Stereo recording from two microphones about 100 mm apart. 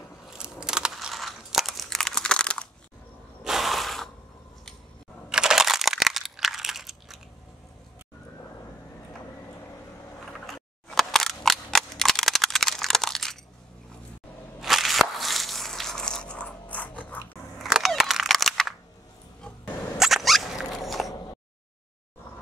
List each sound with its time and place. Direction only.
0.4 s crunch: 5° right (ahead or behind); by 2.7 s 10° left (ahead or behind)
3.4 s ratchet: centre (ahead or behind)
5.3 s crunch: 5° right (ahead or behind)
10.3 s cap gun: 5° left (ahead or behind)
14.6 s a sound: centre (ahead or behind); by 17.2 s 15° left (ahead or behind)
17.6 s a sound: 5° right (ahead or behind)
20.0 s squeak: centre (ahead or behind)